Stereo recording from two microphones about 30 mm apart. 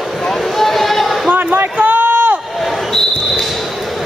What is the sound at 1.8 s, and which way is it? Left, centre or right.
Run, right.